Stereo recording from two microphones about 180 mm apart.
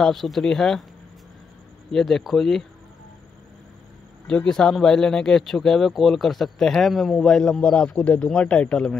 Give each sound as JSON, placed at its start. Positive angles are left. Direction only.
{"t": 0.0, "sound": "speech", "side_deg": 0}
{"t": 1.9, "sound": "speech", "side_deg": 0}
{"t": 4.3, "sound": "speech", "side_deg": 5}